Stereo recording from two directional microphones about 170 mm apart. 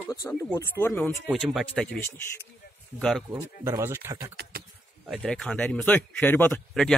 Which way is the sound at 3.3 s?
15° right (ahead or behind).